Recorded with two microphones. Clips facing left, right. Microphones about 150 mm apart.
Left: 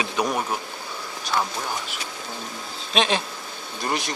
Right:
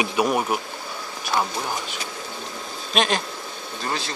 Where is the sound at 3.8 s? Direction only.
15° left (ahead or behind).